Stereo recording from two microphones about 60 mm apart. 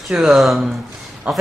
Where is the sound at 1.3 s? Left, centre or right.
Right.